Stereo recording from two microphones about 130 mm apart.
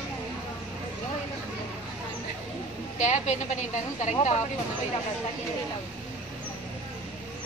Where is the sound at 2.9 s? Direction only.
65° left (ahead or behind).